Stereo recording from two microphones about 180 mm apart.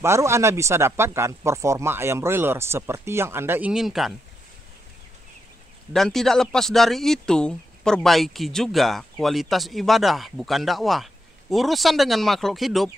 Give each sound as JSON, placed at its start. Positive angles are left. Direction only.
{"t": 0.0, "sound": "speech", "side_deg": -15}
{"t": 5.9, "sound": "speech", "side_deg": 0}